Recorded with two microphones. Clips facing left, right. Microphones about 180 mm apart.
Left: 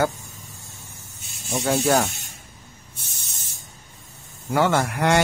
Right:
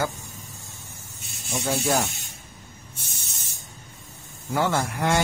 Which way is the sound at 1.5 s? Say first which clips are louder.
Left 4 dB; 65° left (ahead or behind).